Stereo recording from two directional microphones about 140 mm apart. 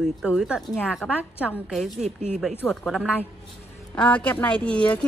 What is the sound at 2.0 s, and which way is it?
Speech, 60° right (ahead or behind).